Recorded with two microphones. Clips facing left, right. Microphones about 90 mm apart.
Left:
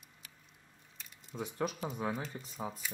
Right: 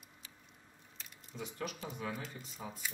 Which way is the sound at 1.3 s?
45° left (ahead or behind).